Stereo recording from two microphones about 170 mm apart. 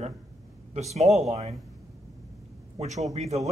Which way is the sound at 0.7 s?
40° right (ahead or behind).